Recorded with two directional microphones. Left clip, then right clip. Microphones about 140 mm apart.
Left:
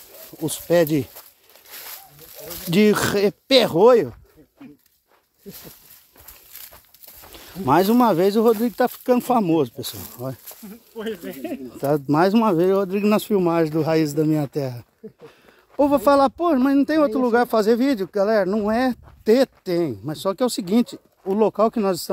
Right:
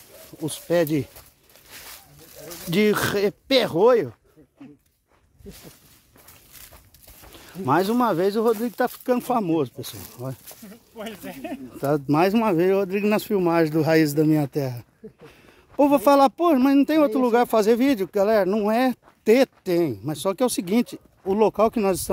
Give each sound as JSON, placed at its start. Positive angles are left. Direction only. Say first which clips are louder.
{"t": 0.3, "sound": "speech", "louder": "left 4 dB", "side_deg": 15}
{"t": 1.7, "sound": "zipper", "louder": "left 3 dB", "side_deg": 35}
{"t": 2.7, "sound": "speech", "louder": "left 3 dB", "side_deg": 5}
{"t": 5.5, "sound": "speech", "louder": "left 3 dB", "side_deg": 30}
{"t": 11.7, "sound": "speech", "louder": "left 2 dB", "side_deg": 0}
{"t": 13.5, "sound": "speech", "louder": "right 3 dB", "side_deg": -20}
{"t": 15.8, "sound": "speech", "louder": "even", "side_deg": -30}